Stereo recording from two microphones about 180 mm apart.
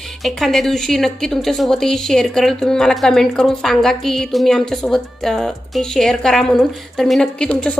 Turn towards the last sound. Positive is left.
turn(degrees=5)  # may be behind; listen again after turning